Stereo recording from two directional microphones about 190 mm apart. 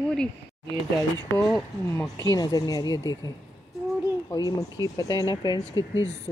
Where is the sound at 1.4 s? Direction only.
5° left (ahead or behind).